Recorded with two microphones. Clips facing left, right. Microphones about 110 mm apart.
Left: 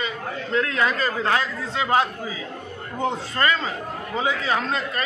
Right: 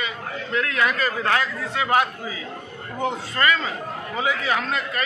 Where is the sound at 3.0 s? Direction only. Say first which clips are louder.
Even; 30° left (ahead or behind).